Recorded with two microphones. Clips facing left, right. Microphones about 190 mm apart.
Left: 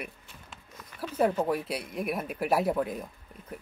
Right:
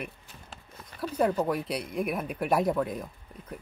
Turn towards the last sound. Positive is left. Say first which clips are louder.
# right 1 dB
turn(degrees=5)  # may be behind; listen again after turning